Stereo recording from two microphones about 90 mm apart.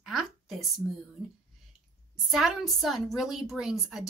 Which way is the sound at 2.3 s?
5° right (ahead or behind).